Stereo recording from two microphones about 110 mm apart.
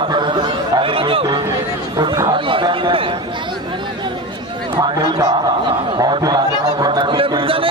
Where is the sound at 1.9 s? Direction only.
40° right (ahead or behind).